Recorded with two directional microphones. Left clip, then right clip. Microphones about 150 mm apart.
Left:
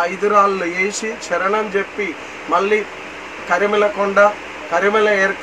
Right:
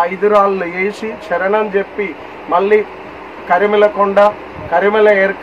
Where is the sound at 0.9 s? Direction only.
30° right (ahead or behind).